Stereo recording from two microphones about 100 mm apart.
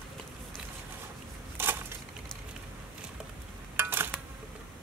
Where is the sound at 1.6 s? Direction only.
25° right (ahead or behind).